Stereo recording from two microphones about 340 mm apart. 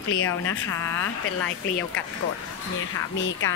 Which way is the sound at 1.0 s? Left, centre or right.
Left.